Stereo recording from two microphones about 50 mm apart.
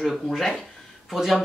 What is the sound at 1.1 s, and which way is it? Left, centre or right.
Speech, centre.